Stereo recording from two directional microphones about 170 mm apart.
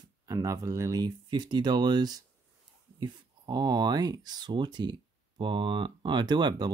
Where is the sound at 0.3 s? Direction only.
20° right (ahead or behind).